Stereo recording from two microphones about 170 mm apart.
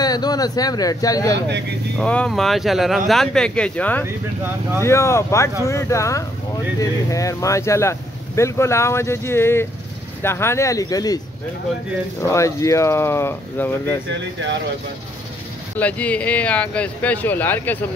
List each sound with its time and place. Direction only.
0.0 s speech: 25° left (ahead or behind)
2.0 s speech: 5° left (ahead or behind); by 11.1 s 20° left (ahead or behind)
12.2 s speech: 15° left (ahead or behind)
15.8 s speech: 10° left (ahead or behind)